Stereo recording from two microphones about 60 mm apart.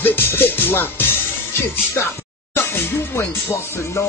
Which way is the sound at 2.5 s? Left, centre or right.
Left.